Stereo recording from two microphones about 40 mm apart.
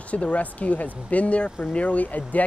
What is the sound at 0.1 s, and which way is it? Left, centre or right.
Speech, left.